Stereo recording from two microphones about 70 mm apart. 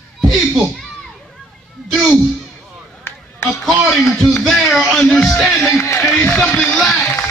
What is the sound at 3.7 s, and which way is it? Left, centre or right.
Speech, centre.